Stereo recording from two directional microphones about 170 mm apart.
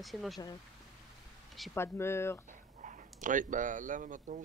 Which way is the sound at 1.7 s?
15° left (ahead or behind).